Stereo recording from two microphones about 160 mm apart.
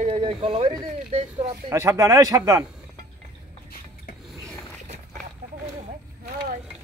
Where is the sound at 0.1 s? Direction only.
35° right (ahead or behind).